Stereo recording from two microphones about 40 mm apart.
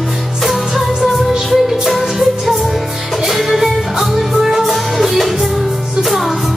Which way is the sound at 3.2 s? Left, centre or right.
Centre.